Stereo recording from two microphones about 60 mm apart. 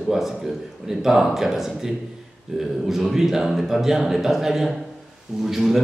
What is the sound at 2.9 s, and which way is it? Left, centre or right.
A man's voice, centre.